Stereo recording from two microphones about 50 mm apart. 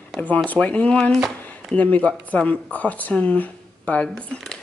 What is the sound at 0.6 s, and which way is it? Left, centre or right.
Speech, left.